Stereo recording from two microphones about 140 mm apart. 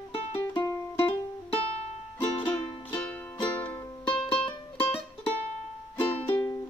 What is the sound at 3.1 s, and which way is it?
Music, 10° left (ahead or behind).